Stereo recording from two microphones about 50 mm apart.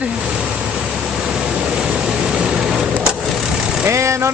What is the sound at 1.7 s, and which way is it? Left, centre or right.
Vehicle, centre.